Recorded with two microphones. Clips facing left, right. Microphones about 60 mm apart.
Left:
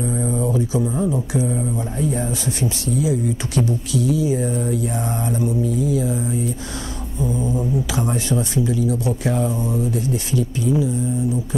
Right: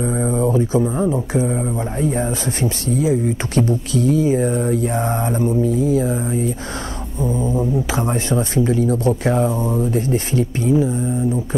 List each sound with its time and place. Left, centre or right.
0.0 s speech: right